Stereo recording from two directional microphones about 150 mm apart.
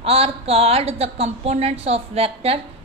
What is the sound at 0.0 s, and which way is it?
A woman's voice, 40° right (ahead or behind).